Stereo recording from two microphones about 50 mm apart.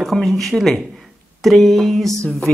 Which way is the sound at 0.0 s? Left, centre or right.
Centre.